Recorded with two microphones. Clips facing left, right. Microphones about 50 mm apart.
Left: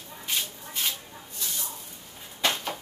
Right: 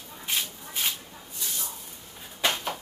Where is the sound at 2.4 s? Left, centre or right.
Centre.